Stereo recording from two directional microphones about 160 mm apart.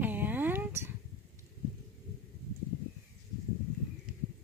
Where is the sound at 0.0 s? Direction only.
10° right (ahead or behind).